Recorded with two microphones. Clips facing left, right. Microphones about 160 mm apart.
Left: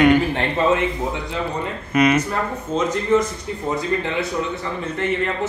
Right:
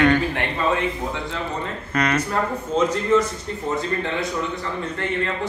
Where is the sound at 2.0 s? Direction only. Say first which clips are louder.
Left 5 dB; 10° left (ahead or behind).